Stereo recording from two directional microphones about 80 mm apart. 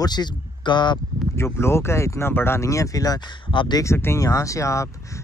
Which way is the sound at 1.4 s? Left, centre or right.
Left.